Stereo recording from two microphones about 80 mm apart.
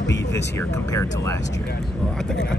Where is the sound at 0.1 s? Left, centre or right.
Left.